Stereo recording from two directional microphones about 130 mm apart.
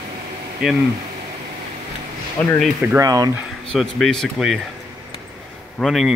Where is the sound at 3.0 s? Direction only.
30° right (ahead or behind).